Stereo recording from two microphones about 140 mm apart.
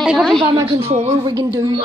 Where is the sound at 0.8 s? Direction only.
45° right (ahead or behind).